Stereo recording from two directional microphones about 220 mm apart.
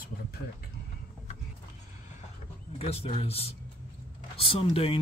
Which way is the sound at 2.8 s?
25° left (ahead or behind).